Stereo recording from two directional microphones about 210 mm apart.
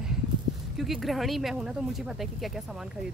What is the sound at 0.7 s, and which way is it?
Speech, centre (ahead or behind).